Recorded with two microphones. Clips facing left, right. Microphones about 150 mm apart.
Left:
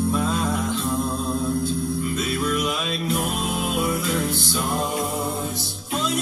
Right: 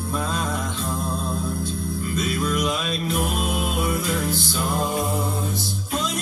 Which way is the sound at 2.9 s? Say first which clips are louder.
Even; centre (ahead or behind).